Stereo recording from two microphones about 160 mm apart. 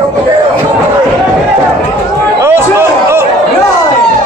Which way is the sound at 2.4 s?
15° right (ahead or behind).